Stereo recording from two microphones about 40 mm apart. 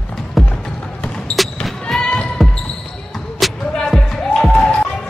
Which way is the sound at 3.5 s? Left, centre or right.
Centre.